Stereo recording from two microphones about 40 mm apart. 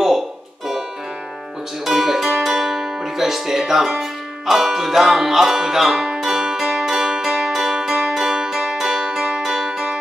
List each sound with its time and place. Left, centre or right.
1.9 s music: centre
9.7 s music: centre